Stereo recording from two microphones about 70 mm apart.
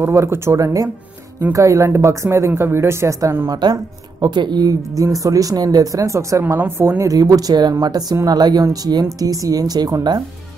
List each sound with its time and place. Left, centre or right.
0.0 s speech: right
3.4 s speech: right
5.2 s speech: right
6.4 s speech: right
7.0 s speech: right